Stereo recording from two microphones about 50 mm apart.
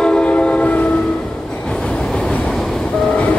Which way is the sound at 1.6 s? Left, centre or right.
Centre.